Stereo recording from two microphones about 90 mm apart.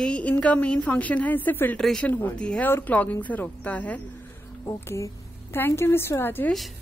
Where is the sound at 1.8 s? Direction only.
5° left (ahead or behind).